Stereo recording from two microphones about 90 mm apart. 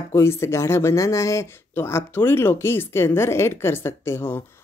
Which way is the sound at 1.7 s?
25° left (ahead or behind).